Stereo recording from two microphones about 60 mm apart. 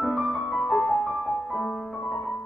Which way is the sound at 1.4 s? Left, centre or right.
Centre.